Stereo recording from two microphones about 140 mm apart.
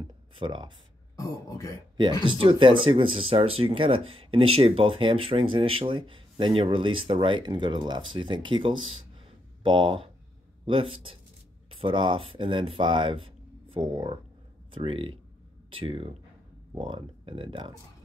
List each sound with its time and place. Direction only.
0.4 s speech: 35° right (ahead or behind)
1.1 s speech: 25° left (ahead or behind)
2.2 s speech: 35° right (ahead or behind)